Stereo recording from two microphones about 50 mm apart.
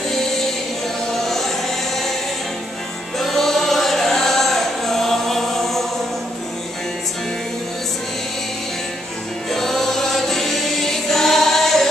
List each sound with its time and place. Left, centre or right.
1.2 s music: centre
3.2 s music: centre
9.5 s music: centre